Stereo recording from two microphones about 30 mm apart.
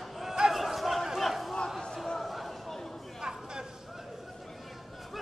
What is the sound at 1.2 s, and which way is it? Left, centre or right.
Crowd, centre.